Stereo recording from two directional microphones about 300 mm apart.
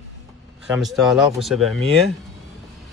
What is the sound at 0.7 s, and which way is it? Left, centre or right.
Speech, centre.